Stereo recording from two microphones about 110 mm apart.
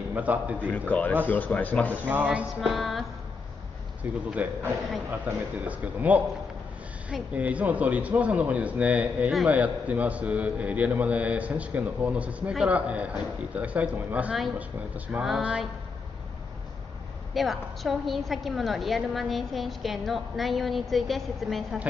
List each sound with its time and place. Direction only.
0.1 s a man's voice: 15° right (ahead or behind)
0.7 s speech: 15° left (ahead or behind)
2.0 s a man's voice: 15° right (ahead or behind)
2.6 s a woman's voice: centre (ahead or behind)
4.0 s a man's voice: 15° right (ahead or behind)
17.3 s a woman's voice: centre (ahead or behind)